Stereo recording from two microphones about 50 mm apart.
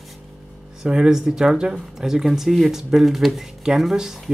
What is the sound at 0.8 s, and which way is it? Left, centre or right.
Speech, centre.